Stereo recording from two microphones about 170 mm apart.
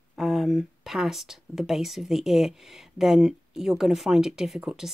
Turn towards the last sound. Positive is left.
turn(degrees=0)  # may be behind; listen again after turning